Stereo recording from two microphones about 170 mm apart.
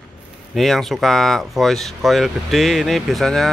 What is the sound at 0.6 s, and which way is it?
Speech, centre (ahead or behind).